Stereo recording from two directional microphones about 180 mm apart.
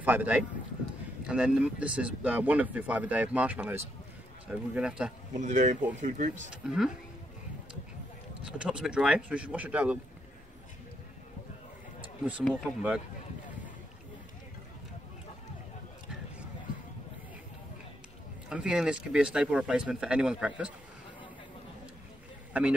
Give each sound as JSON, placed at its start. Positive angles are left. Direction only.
{"t": 0.0, "sound": "speech", "side_deg": -10}
{"t": 5.3, "sound": "speech", "side_deg": -45}
{"t": 6.5, "sound": "speech", "side_deg": -5}
{"t": 8.5, "sound": "speech", "side_deg": -5}
{"t": 12.3, "sound": "speech", "side_deg": -5}
{"t": 18.5, "sound": "speech", "side_deg": -5}
{"t": 22.5, "sound": "speech", "side_deg": -5}